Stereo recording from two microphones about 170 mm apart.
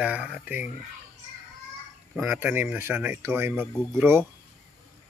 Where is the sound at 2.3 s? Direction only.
10° right (ahead or behind).